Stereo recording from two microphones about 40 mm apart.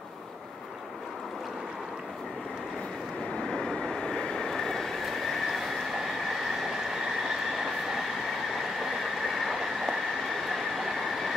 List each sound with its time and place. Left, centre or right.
3.3 s vehicle: centre
7.2 s train: centre